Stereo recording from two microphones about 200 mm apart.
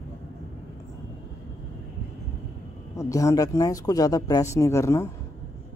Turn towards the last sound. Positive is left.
turn(degrees=15)  # may be behind; listen again after turning